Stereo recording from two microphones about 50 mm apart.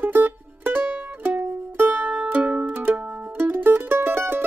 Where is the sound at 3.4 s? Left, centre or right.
Right.